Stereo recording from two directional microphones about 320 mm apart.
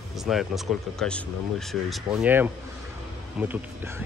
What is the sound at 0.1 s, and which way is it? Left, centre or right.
Speech, centre.